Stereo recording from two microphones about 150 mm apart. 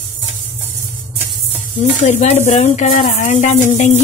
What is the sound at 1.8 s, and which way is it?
Speech, 45° left (ahead or behind).